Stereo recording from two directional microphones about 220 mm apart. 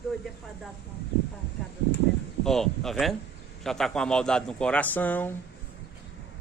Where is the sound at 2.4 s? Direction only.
Centre (ahead or behind).